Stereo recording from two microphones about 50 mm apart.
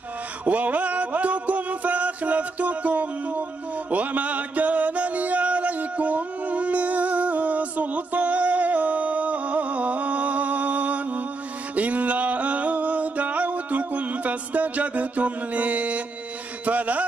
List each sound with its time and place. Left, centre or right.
0.5 s music: right
11.7 s a sound: right
16.6 s music: right